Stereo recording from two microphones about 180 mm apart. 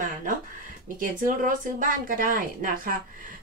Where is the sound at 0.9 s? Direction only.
50° right (ahead or behind).